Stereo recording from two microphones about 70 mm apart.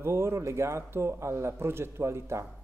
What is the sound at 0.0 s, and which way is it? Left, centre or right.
Speech, right.